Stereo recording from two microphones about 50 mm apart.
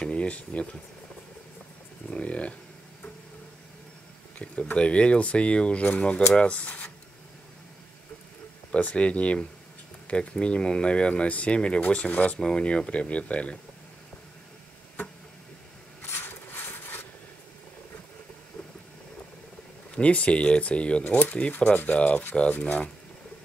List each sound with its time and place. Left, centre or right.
0.0 s speech: left
2.0 s speech: left
4.7 s speech: left
8.7 s speech: left
12.4 s speech: centre
16.1 s a sound: left
20.0 s speech: left